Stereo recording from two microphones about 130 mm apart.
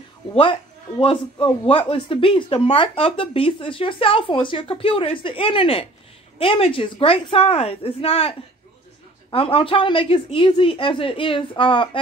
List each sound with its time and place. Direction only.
0.3 s a man's voice: 40° left (ahead or behind)